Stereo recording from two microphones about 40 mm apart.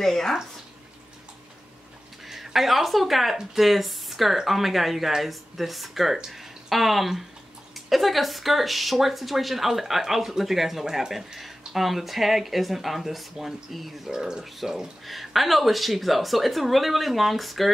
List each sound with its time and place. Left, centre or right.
0.0 s speech: centre
2.2 s speech: centre
6.1 s speech: centre
6.7 s speech: centre
14.1 s speech: centre